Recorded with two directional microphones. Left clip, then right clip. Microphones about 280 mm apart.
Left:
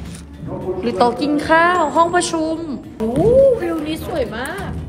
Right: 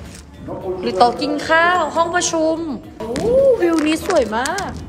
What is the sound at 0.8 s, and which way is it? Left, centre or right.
A woman's voice, centre.